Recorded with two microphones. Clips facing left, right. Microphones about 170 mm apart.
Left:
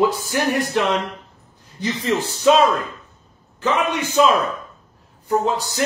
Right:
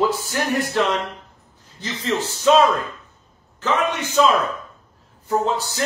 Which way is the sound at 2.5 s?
15° left (ahead or behind).